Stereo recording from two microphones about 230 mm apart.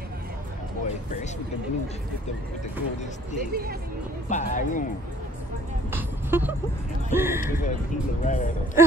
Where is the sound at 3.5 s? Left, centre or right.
Right.